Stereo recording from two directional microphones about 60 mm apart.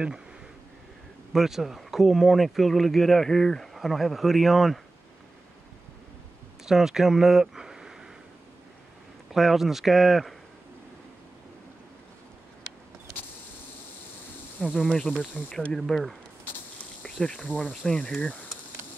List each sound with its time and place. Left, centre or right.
1.3 s speech: centre
6.6 s speech: centre
9.3 s speech: centre
14.8 s speech: centre
17.0 s cricket: centre
17.5 s speech: left